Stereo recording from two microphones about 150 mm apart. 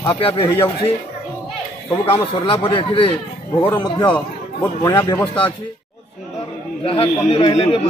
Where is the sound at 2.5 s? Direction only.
40° left (ahead or behind).